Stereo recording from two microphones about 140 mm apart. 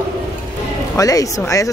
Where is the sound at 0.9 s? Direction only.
25° left (ahead or behind).